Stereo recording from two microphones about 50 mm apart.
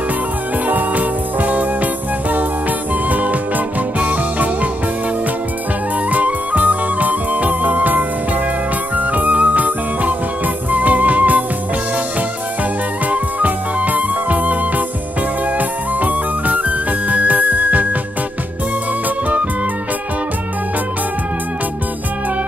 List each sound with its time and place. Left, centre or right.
0.7 s music: right
3.1 s music: right
6.0 s music: right
13.1 s music: right